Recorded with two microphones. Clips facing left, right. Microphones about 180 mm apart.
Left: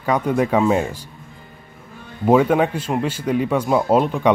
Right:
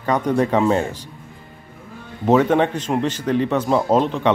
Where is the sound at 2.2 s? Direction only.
10° left (ahead or behind).